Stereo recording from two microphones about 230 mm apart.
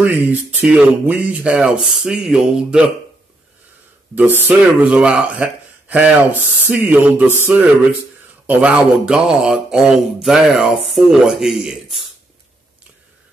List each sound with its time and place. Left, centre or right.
0.0 s speech: centre
4.1 s speech: centre